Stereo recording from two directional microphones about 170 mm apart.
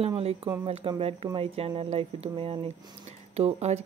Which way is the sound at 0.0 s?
35° right (ahead or behind).